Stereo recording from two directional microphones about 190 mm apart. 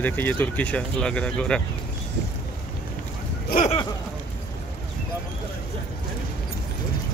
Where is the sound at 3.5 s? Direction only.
50° left (ahead or behind).